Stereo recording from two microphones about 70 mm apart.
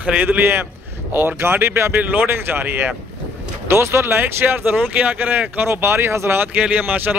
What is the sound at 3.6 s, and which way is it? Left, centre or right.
Speech, right.